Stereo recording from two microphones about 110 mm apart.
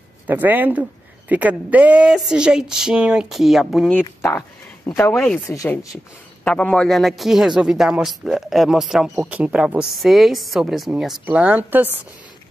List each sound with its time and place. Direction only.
0.3 s speech: 15° right (ahead or behind)
4.4 s a sound: 25° left (ahead or behind)
5.5 s speech: 30° left (ahead or behind)
6.4 s speech: 10° left (ahead or behind); by 12.0 s 15° right (ahead or behind)